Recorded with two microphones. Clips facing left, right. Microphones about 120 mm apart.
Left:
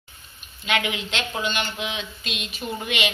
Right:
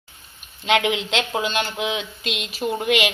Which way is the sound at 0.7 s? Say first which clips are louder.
Right 6 dB; 85° right.